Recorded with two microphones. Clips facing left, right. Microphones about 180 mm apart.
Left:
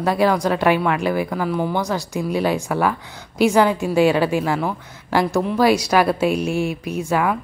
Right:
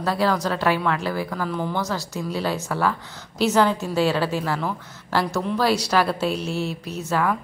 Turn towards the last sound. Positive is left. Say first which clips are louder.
# left 3 dB
turn(degrees=10)  # may be behind; listen again after turning